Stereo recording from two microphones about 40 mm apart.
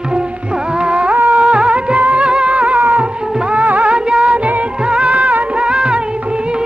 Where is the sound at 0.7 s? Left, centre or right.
Right.